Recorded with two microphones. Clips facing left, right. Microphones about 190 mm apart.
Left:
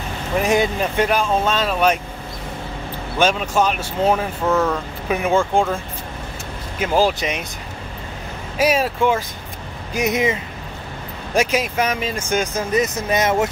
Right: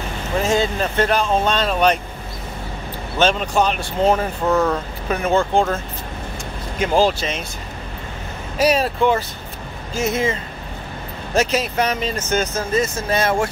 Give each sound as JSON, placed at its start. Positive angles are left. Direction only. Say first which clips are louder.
{"t": 0.4, "sound": "speech", "louder": "left 1 dB", "side_deg": 15}
{"t": 3.2, "sound": "speech", "louder": "even", "side_deg": 5}
{"t": 4.5, "sound": "speech", "louder": "right 1 dB", "side_deg": -10}
{"t": 5.0, "sound": "speech", "louder": "left 1 dB", "side_deg": 10}
{"t": 6.8, "sound": "speech", "louder": "right 1 dB", "side_deg": 10}
{"t": 8.5, "sound": "speech", "louder": "right 1 dB", "side_deg": 10}